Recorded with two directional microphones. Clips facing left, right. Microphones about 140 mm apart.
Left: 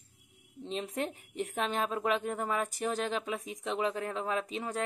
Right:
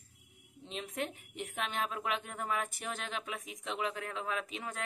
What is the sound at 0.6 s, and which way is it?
A woman's voice, 35° left (ahead or behind).